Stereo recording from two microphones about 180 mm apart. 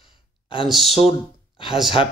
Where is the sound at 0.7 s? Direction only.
Centre (ahead or behind).